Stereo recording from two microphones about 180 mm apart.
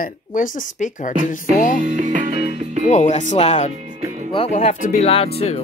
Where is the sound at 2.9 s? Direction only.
40° left (ahead or behind).